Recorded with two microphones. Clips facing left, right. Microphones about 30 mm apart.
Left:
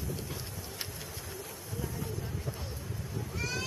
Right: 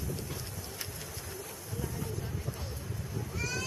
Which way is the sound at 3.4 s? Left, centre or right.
Centre.